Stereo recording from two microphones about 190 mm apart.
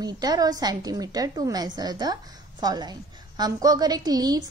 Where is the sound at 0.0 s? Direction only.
20° right (ahead or behind).